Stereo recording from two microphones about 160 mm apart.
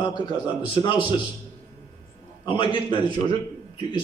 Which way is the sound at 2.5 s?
30° left (ahead or behind).